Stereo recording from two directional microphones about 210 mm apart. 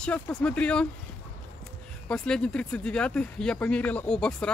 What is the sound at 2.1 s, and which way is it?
Speech, 5° left (ahead or behind).